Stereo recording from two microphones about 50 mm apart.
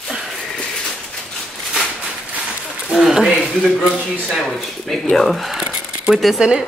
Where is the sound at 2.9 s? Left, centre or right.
Centre.